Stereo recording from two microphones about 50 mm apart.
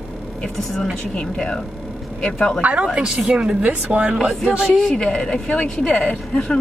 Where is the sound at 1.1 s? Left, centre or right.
Centre.